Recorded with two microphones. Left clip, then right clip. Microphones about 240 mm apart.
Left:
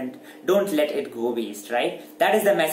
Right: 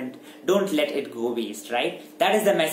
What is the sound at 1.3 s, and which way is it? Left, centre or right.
A man's voice, centre.